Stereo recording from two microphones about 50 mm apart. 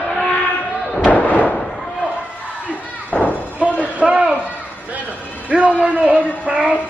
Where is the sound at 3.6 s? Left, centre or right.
Right.